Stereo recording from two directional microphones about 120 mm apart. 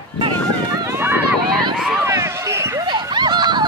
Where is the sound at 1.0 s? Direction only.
15° right (ahead or behind).